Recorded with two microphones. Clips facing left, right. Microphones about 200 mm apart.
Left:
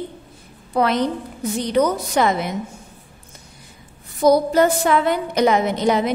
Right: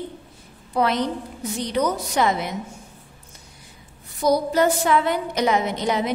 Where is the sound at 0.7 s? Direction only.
55° left (ahead or behind).